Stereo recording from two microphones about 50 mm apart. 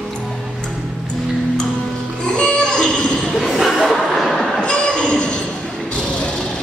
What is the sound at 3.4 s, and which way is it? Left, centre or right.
Chuckle, centre.